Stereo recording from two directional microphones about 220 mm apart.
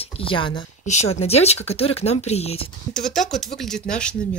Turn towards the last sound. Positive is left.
turn(degrees=5)  # may be behind; listen again after turning